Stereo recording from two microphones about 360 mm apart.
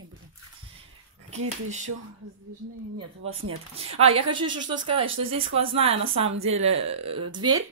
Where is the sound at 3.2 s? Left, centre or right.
Right.